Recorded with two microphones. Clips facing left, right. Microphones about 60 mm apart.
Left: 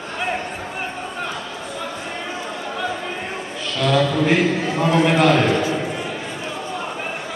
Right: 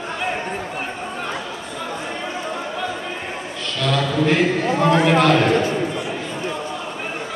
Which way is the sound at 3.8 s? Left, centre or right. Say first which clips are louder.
Left 2 dB; centre.